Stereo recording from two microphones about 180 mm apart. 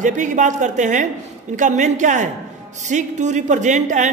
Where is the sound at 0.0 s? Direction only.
45° right (ahead or behind).